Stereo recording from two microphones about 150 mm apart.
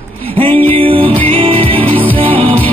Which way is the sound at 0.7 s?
35° right (ahead or behind).